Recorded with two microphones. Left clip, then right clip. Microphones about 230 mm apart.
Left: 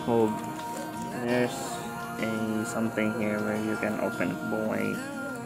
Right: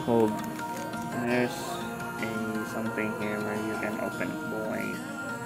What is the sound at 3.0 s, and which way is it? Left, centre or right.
Speech, left.